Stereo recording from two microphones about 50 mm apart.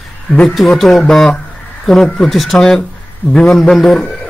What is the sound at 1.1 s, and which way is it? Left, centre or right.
A man's voice, centre.